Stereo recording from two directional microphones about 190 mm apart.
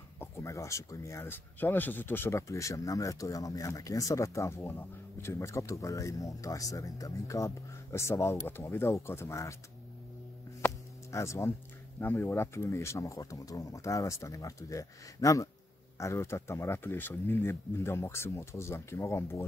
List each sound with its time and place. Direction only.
0.2 s speech: 15° left (ahead or behind)
10.6 s music: 15° left (ahead or behind)
12.0 s speech: 10° left (ahead or behind)